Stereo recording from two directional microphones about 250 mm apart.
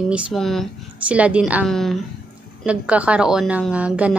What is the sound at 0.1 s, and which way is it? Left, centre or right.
A woman's voice, centre.